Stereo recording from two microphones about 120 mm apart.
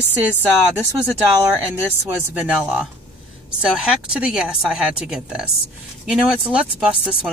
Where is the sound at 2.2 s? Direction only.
15° right (ahead or behind).